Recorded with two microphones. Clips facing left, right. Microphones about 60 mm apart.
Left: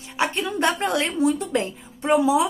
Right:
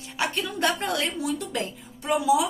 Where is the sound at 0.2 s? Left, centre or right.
Left.